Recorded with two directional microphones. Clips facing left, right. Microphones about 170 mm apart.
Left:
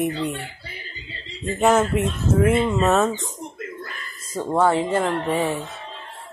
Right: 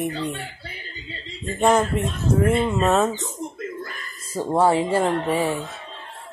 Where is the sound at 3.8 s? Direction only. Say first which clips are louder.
Right 1 dB; 35° right (ahead or behind).